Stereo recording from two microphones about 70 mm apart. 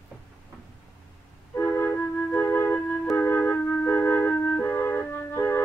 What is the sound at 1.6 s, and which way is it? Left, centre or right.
Flute, left.